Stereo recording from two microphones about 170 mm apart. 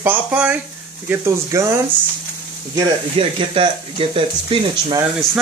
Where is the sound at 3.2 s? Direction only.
30° right (ahead or behind).